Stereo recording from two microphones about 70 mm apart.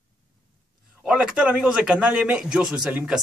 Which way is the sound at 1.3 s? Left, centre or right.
Centre.